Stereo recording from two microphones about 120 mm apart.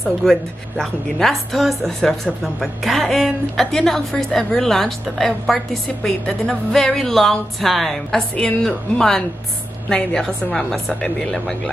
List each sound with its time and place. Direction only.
0.2 s a woman's voice: 5° left (ahead or behind)